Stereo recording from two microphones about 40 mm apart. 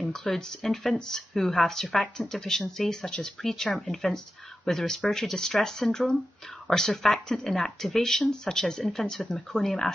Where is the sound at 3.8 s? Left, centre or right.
Centre.